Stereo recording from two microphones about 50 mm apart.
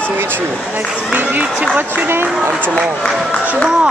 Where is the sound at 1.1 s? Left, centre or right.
Right.